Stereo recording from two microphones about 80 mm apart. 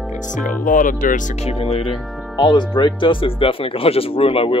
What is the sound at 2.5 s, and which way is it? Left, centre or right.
Speech, left.